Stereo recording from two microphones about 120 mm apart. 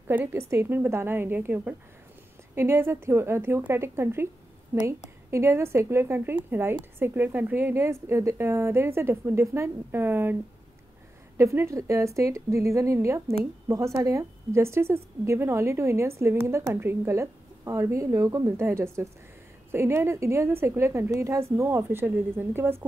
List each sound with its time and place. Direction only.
0.1 s a woman's voice: 20° right (ahead or behind)
11.3 s a woman's voice: 25° right (ahead or behind)